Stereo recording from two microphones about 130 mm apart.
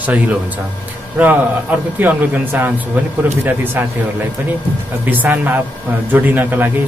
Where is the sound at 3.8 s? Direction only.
15° right (ahead or behind).